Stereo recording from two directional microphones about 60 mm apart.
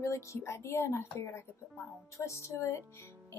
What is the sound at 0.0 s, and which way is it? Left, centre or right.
Speech, left.